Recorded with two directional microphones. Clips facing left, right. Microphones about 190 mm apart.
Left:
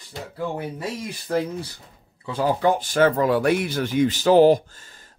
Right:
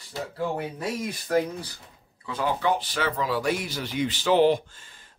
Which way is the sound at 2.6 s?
45° left (ahead or behind).